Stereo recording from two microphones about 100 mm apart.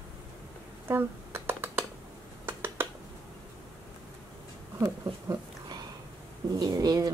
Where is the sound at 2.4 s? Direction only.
20° right (ahead or behind).